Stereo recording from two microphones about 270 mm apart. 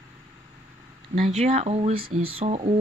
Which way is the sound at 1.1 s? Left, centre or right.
Right.